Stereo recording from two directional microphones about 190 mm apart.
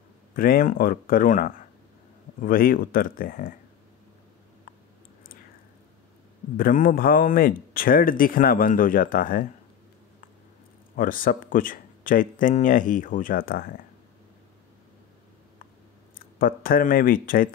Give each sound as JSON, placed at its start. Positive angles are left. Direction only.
{"t": 0.3, "sound": "speech", "side_deg": 50}
{"t": 6.5, "sound": "speech", "side_deg": 45}
{"t": 11.0, "sound": "speech", "side_deg": 45}
{"t": 16.2, "sound": "speech", "side_deg": 50}